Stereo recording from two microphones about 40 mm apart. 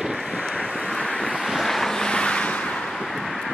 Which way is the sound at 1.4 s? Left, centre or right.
Centre.